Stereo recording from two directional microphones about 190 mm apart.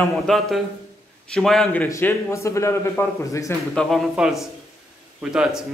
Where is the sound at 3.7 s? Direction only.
Centre (ahead or behind).